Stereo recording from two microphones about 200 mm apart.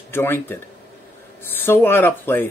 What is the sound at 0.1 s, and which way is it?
Speech, 10° left (ahead or behind).